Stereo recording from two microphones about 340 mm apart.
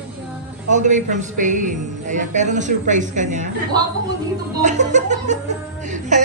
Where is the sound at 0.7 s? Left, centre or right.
Right.